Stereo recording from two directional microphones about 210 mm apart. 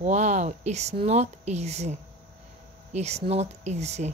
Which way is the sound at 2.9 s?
30° right (ahead or behind).